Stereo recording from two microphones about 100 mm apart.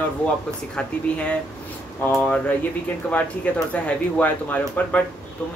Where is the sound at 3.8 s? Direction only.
15° left (ahead or behind).